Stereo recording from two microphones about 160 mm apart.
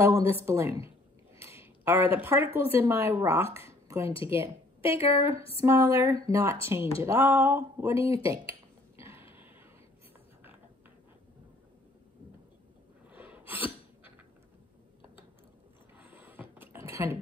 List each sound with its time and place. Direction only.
0.0 s a woman's voice: 15° right (ahead or behind)
3.6 s a sound: 15° right (ahead or behind)
4.3 s speech: 15° right (ahead or behind)
8.1 s finger snapping: 20° right (ahead or behind)
13.1 s gasp: 10° right (ahead or behind)
16.0 s a sound: 10° right (ahead or behind)